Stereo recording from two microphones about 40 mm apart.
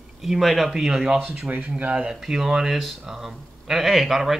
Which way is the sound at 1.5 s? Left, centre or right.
Right.